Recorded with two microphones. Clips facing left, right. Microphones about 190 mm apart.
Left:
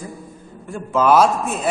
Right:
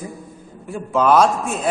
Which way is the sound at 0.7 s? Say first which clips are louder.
Even; 5° right (ahead or behind).